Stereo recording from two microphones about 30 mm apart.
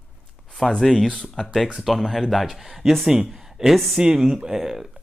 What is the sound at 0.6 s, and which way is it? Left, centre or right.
Speech, centre.